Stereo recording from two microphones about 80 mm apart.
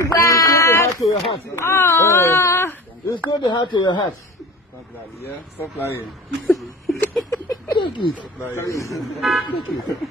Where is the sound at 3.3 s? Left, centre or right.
Left.